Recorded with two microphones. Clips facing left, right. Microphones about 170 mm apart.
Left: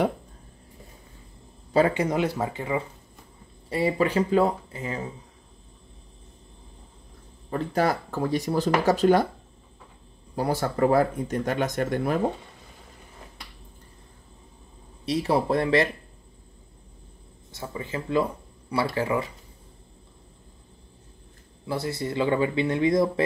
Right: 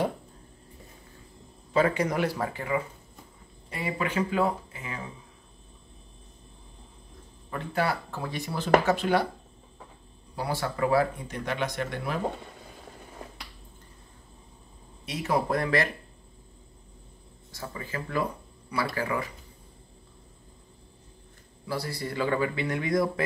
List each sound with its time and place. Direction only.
1.7 s speech: 30° left (ahead or behind)
3.7 s speech: 35° left (ahead or behind)
7.4 s speech: 40° left (ahead or behind)
10.3 s speech: 45° left (ahead or behind)
15.0 s speech: 30° left (ahead or behind)
17.5 s speech: 25° left (ahead or behind)
21.6 s speech: 20° left (ahead or behind)